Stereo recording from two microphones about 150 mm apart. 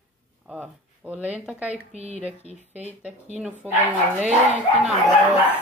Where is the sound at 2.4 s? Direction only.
45° right (ahead or behind).